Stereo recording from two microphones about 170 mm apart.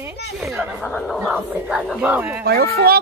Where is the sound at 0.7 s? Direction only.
5° left (ahead or behind).